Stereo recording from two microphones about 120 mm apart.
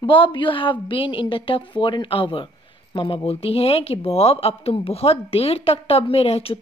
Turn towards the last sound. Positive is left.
turn(degrees=55)  # may be behind; listen again after turning